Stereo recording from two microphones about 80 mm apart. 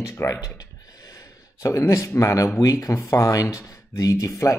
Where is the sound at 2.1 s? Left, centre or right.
Left.